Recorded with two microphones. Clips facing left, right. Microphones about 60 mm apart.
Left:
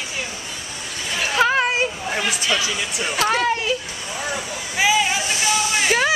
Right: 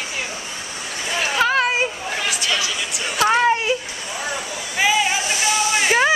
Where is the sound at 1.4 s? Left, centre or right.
Centre.